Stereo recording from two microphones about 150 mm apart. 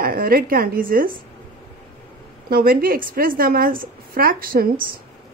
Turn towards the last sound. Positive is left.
turn(degrees=-75)  # may be behind; listen again after turning